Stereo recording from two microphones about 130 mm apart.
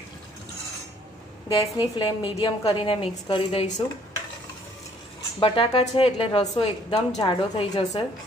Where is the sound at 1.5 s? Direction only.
35° left (ahead or behind).